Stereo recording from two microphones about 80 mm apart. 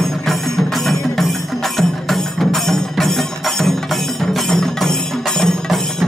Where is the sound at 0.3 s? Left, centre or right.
Centre.